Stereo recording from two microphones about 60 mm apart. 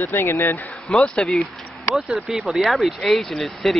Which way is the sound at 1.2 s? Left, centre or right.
Centre.